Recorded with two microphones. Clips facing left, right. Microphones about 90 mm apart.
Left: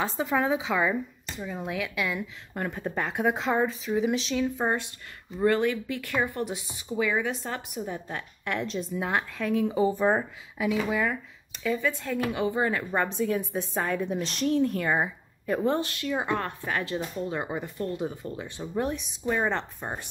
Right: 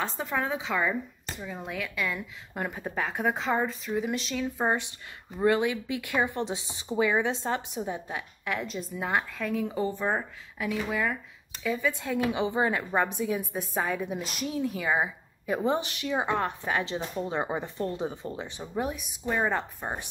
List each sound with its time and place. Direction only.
0.0 s a woman's voice: 5° left (ahead or behind)
2.6 s a woman's voice: 10° right (ahead or behind)
2.9 s a woman's voice: centre (ahead or behind)
4.6 s speech: 15° right (ahead or behind)
8.1 s a woman's voice: 5° right (ahead or behind); by 18.5 s 30° right (ahead or behind)
18.6 s a woman's voice: 10° right (ahead or behind)